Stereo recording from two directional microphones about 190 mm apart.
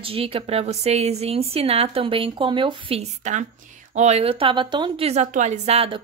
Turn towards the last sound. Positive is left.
turn(degrees=-30)  # may be behind; listen again after turning